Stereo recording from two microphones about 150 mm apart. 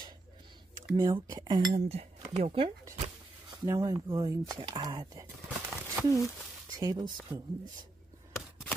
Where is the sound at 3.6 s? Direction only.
20° right (ahead or behind).